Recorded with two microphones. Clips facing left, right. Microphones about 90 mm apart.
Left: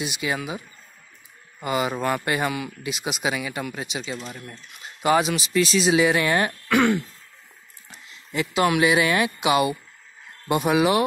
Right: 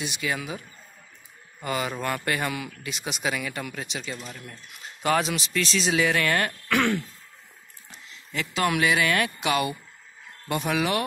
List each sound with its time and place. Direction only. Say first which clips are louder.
0.0 s speech: left 3 dB; 15° left (ahead or behind)
1.6 s speech: left 4 dB; 15° left (ahead or behind)
6.7 s throat clearing: left 4 dB; 5° left (ahead or behind)
8.3 s speech: left 4 dB; 15° left (ahead or behind)